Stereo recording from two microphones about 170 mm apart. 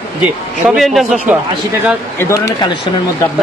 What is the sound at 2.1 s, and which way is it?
Speech, 15° left (ahead or behind).